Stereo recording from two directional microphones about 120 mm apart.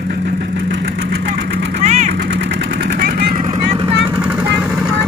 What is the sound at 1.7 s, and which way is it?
Vehicle, 75° right (ahead or behind).